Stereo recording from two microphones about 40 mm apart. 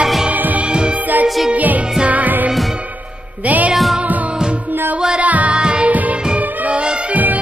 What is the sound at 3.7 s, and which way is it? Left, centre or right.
Music, centre.